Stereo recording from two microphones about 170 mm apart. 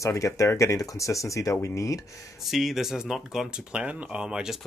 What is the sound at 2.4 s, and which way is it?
Speech, centre (ahead or behind).